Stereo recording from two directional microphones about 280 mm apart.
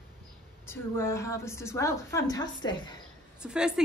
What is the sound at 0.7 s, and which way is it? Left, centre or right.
Speech, centre.